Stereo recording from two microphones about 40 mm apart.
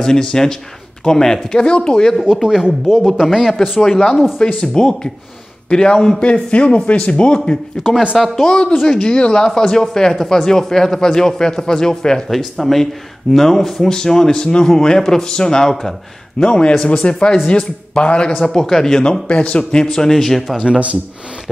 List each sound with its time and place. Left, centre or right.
0.0 s a man's voice: centre
2.4 s speech: centre
3.8 s a man's voice: centre
8.2 s speech: centre
8.5 s a man's voice: left
12.3 s a man's voice: centre; by 18.3 s left
18.4 s a man's voice: centre
19.2 s a man's voice: left; by 20.4 s centre
20.4 s speech: centre
20.7 s speech: right